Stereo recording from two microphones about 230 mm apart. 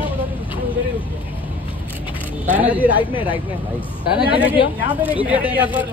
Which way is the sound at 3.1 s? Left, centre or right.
Left.